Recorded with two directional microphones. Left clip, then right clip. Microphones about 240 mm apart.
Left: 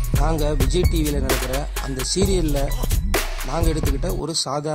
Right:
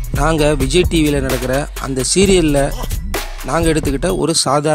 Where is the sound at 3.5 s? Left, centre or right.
Right.